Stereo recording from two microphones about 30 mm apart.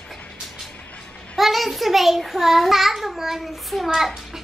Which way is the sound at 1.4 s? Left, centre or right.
Centre.